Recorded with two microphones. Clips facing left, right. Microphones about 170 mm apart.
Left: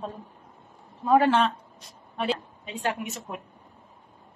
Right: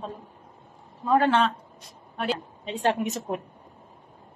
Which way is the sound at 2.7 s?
30° right (ahead or behind).